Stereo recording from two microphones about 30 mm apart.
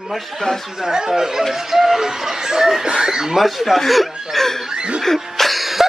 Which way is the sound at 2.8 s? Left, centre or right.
Right.